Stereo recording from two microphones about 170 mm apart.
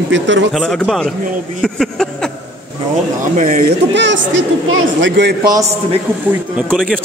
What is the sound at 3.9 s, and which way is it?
A man's voice, 90° right.